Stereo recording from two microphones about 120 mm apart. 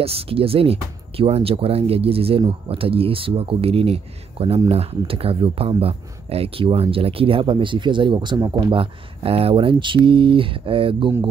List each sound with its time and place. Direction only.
0.0 s speech: 55° right (ahead or behind)